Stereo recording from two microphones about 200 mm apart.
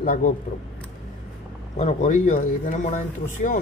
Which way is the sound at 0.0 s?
40° left (ahead or behind).